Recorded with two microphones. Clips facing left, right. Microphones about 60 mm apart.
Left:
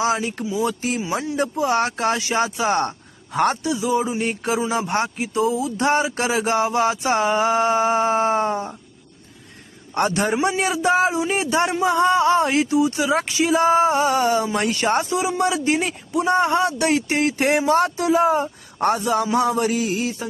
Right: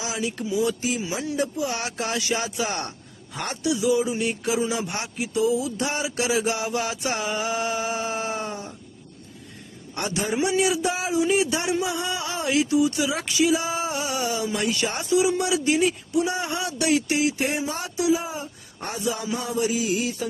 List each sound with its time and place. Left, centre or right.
0.0 s speech: left
1.1 s speech: left
9.9 s a sound: left
10.3 s speech: left
15.0 s speech: left
17.4 s speech: left
19.3 s a sound: left